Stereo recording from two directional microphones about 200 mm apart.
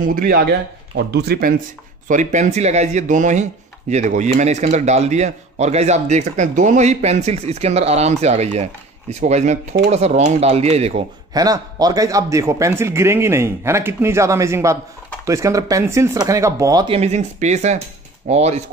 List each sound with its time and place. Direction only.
0.0 s speech: 45° right (ahead or behind)
2.0 s speech: 40° right (ahead or behind)
11.3 s a man's voice: 20° right (ahead or behind)